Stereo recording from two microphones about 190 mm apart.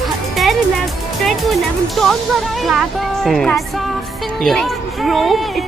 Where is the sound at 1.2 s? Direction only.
Centre (ahead or behind).